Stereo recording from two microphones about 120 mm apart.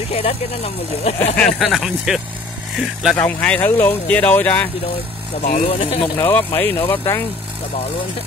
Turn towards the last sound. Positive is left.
turn(degrees=20)  # may be behind; listen again after turning